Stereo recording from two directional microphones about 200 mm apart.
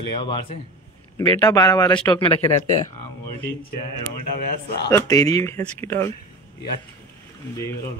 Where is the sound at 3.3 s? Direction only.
45° left (ahead or behind).